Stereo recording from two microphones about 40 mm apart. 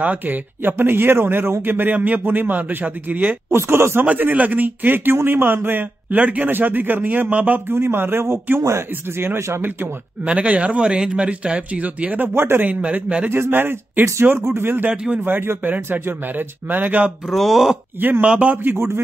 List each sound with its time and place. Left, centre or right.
0.0 s a man's voice: right
2.0 s a man's voice: right
3.5 s speech: right
4.0 s a man's voice: right
6.5 s a man's voice: right
7.6 s speech: right
10.2 s speech: right
12.4 s a man's voice: right
13.3 s speech: right
15.2 s a man's voice: right
17.3 s speech: centre
18.2 s a man's voice: right
18.6 s a man's voice: right